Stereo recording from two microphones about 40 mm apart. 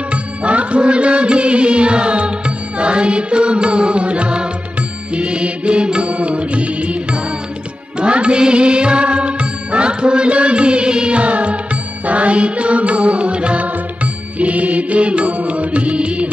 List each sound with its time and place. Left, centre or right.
0.1 s music: right